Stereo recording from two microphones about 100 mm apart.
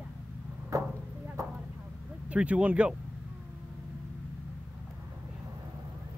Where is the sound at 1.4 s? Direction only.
35° right (ahead or behind).